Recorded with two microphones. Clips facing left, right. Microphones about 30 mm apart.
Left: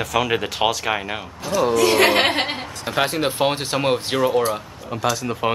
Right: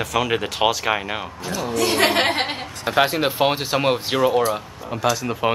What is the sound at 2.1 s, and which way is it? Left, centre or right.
Chuckle, left.